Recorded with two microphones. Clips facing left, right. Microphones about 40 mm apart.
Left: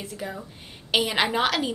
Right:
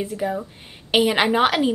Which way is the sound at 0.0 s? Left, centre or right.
Centre.